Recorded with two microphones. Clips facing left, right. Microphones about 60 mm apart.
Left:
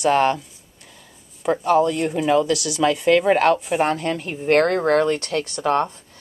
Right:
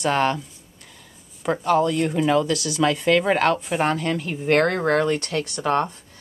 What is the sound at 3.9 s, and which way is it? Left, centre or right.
Speech, left.